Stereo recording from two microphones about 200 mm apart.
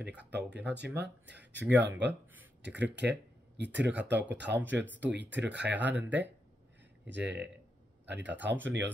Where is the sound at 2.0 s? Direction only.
10° right (ahead or behind).